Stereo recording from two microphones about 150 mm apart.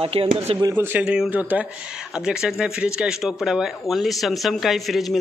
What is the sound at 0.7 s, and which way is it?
Speech, 10° right (ahead or behind).